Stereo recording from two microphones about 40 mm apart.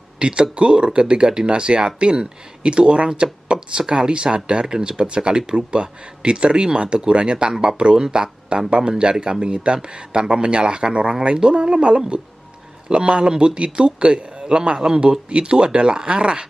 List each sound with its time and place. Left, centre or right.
0.2 s speech: right